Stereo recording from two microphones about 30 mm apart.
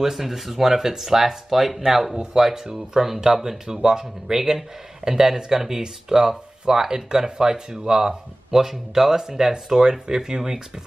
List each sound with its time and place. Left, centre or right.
0.0 s speech: centre
5.8 s speech: right